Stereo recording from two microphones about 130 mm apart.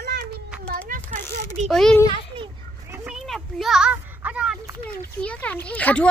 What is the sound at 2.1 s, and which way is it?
Children playing, 40° right (ahead or behind).